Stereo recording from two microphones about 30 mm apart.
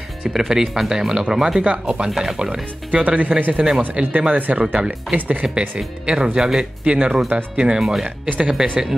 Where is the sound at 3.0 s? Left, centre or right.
Right.